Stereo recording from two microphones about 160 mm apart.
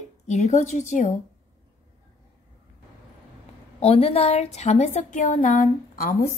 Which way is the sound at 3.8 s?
40° left (ahead or behind).